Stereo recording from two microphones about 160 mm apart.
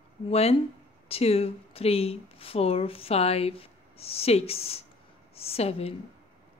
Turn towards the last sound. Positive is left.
turn(degrees=40)  # may be behind; listen again after turning